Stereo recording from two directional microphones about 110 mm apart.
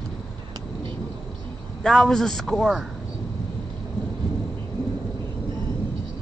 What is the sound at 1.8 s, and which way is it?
A man's voice, 5° left (ahead or behind).